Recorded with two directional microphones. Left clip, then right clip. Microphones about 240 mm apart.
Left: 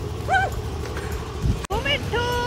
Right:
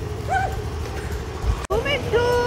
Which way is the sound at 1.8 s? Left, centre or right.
Centre.